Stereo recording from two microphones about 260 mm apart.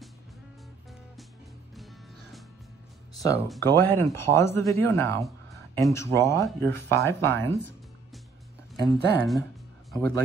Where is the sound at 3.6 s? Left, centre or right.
Centre.